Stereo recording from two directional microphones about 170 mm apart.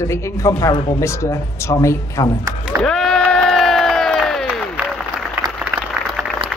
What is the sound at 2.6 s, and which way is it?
Crowd, centre (ahead or behind).